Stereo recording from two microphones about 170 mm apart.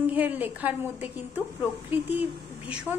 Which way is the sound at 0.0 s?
10° right (ahead or behind).